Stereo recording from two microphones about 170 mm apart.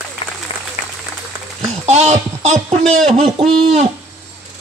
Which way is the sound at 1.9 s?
40° right (ahead or behind).